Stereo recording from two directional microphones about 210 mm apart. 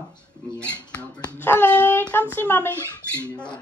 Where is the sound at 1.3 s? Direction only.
10° left (ahead or behind).